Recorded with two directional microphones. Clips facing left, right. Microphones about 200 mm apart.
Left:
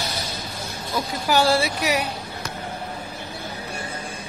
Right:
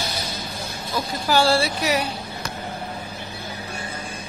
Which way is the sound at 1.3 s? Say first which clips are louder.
Even; 20° left (ahead or behind).